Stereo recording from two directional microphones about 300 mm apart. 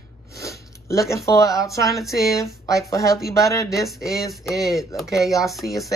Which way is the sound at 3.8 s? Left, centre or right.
Centre.